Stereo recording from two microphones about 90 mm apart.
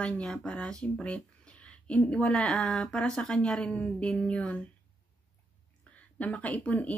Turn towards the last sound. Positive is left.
turn(degrees=15)  # may be behind; listen again after turning